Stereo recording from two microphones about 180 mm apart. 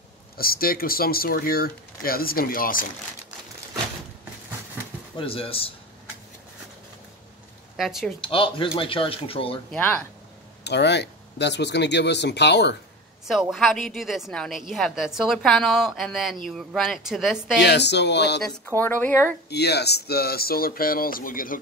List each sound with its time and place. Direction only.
0.4 s speech: 55° left (ahead or behind)
5.1 s speech: 30° left (ahead or behind)
7.7 s speech: centre (ahead or behind)
8.2 s speech: 30° left (ahead or behind)
9.7 s speech: 5° left (ahead or behind)
10.6 s speech: 70° left (ahead or behind)
13.3 s a woman's voice: centre (ahead or behind)
17.6 s speech: 70° left (ahead or behind)
18.5 s speech: 10° left (ahead or behind)
19.5 s speech: 65° left (ahead or behind); by 21.5 s 50° left (ahead or behind)